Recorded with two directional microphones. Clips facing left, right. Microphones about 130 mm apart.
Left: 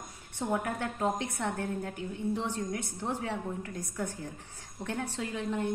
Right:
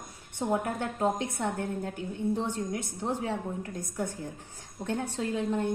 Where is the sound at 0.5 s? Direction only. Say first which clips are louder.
Right 2 dB; 25° right (ahead or behind).